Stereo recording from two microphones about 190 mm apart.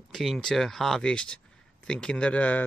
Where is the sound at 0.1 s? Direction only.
Centre (ahead or behind).